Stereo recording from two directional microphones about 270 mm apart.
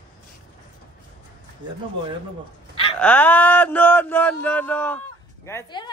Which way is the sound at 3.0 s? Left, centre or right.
Centre.